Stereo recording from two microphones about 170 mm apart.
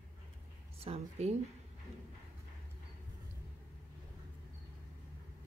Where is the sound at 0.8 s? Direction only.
35° right (ahead or behind).